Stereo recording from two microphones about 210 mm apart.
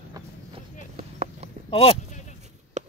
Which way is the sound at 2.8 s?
35° right (ahead or behind).